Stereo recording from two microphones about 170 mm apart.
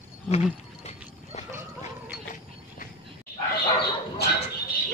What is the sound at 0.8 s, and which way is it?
Clip-clop, 40° left (ahead or behind).